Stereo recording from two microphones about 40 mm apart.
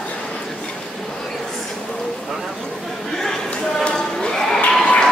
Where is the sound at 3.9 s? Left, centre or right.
Centre.